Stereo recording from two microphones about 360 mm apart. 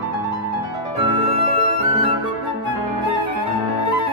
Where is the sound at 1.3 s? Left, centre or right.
Centre.